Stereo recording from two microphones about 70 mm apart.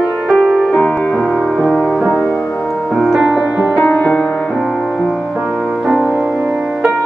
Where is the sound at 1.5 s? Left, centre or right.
Centre.